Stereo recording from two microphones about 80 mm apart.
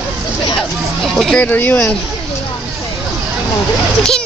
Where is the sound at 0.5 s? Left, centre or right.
Centre.